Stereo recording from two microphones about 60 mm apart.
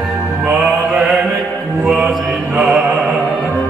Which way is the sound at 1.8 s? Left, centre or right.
Centre.